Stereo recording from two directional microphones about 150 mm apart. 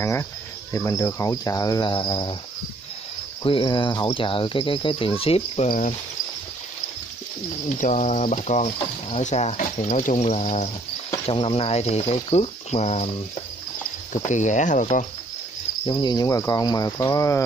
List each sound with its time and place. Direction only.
0.0 s speech: 20° left (ahead or behind)
3.4 s speech: 35° left (ahead or behind)
5.7 s speech: 60° left (ahead or behind)
7.8 s speech: 55° left (ahead or behind)
14.1 s speech: 55° left (ahead or behind)
15.9 s speech: 30° left (ahead or behind)